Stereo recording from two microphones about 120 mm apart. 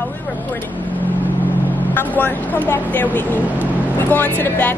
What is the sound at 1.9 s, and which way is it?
Speech, 15° left (ahead or behind).